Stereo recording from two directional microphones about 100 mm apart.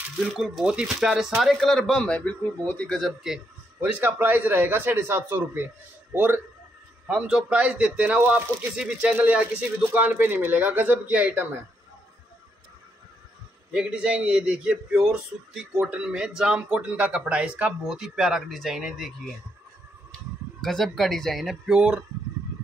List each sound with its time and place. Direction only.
0.2 s speech: 5° right (ahead or behind); by 3.0 s 15° left (ahead or behind)
3.8 s a man's voice: 15° right (ahead or behind)
13.7 s a man's voice: 10° right (ahead or behind)
20.6 s speech: 5° left (ahead or behind)